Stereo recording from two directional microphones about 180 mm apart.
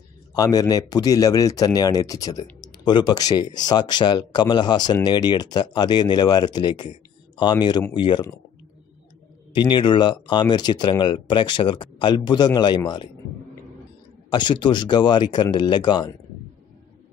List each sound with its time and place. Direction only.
0.4 s speech: 20° left (ahead or behind)
9.6 s speech: 25° left (ahead or behind)
14.3 s speech: 25° left (ahead or behind)